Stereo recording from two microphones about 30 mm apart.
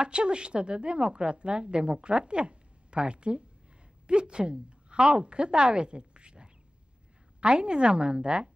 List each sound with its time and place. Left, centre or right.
0.0 s a woman's voice: right